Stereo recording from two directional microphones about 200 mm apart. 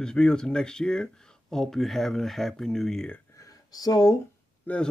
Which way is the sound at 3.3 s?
15° left (ahead or behind).